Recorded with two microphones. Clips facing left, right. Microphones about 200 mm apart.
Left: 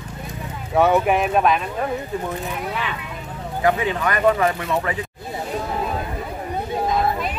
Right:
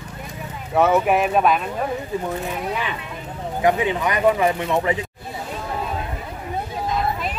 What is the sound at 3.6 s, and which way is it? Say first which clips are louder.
Speech: right 1 dB; 15° right (ahead or behind).